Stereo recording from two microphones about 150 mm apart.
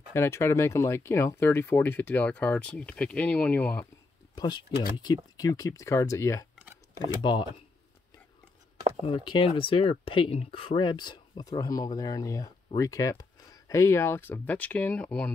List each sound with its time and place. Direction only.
0.1 s speech: 15° left (ahead or behind)
4.4 s speech: 30° left (ahead or behind)
7.3 s speech: 30° left (ahead or behind)
9.0 s speech: 35° left (ahead or behind); by 15.3 s 10° left (ahead or behind)